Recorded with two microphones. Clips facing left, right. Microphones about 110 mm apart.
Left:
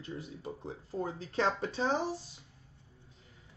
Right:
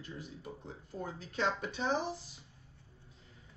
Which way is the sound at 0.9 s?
30° left (ahead or behind).